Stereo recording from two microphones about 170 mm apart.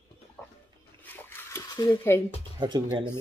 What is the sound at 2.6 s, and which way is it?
Speech, 25° right (ahead or behind).